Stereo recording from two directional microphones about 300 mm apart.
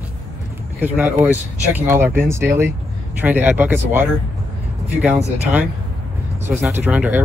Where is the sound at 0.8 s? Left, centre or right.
Centre.